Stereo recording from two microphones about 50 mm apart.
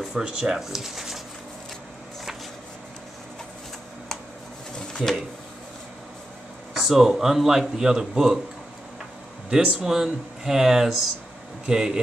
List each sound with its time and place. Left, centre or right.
0.1 s speech: centre
4.7 s a sound: centre
6.8 s speech: centre
9.5 s speech: right